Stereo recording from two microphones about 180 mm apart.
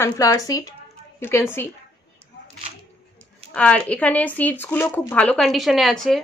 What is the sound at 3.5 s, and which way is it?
Speech, 5° left (ahead or behind).